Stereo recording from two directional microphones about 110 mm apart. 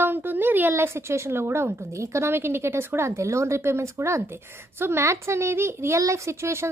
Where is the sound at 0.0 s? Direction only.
20° right (ahead or behind).